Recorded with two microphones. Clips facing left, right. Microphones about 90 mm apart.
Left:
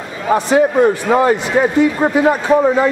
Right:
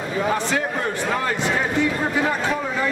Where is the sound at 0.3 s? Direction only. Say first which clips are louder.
Left 14 dB; 25° left (ahead or behind).